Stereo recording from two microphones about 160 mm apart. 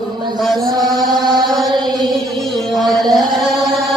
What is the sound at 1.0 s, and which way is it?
Mantra, 25° right (ahead or behind).